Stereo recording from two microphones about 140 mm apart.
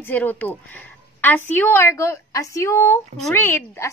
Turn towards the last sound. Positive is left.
turn(degrees=15)  # may be behind; listen again after turning